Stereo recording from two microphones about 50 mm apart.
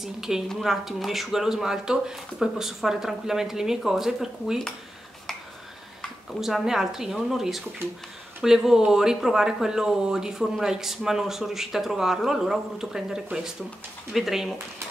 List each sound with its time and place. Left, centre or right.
0.0 s speech: centre
6.4 s speech: centre